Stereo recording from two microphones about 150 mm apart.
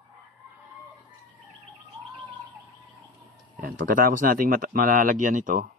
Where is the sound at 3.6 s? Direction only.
65° right (ahead or behind).